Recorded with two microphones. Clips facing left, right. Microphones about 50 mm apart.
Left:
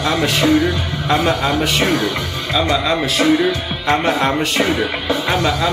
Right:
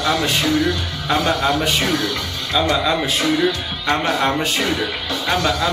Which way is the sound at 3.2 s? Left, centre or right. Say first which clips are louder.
Left 6 dB; centre.